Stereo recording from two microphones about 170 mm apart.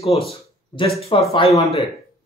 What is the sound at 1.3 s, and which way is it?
Speech, 35° left (ahead or behind).